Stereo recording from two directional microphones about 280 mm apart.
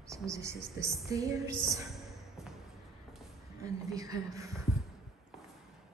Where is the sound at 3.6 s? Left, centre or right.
Centre.